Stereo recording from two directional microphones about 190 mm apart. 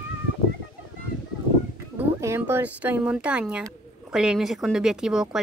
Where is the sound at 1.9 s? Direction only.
10° right (ahead or behind).